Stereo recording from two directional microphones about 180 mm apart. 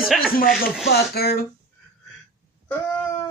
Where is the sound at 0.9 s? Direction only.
60° left (ahead or behind).